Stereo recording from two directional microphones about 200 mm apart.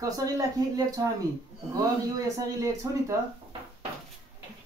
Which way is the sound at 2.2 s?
15° right (ahead or behind).